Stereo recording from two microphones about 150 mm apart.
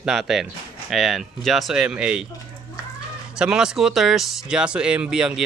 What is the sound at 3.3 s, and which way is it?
Speech, 5° right (ahead or behind).